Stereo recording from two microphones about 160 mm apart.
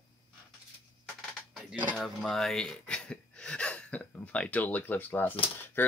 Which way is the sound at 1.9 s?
Centre (ahead or behind).